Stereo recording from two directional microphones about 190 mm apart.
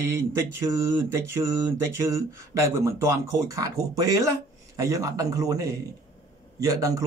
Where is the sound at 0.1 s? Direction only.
15° right (ahead or behind).